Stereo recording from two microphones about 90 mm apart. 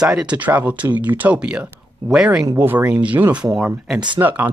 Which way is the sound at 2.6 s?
20° right (ahead or behind).